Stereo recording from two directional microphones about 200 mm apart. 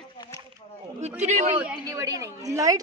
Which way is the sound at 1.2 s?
35° right (ahead or behind).